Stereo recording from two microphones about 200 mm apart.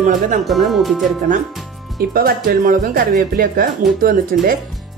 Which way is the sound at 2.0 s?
45° right (ahead or behind).